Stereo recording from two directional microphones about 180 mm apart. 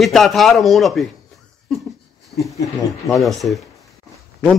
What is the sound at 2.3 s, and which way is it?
Speech, 35° left (ahead or behind).